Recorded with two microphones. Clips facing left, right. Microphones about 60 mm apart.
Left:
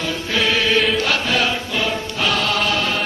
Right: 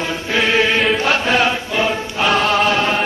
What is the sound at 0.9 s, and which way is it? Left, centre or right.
Music, right.